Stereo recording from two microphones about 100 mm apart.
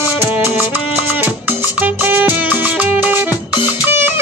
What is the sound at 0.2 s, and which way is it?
Music, 20° right (ahead or behind).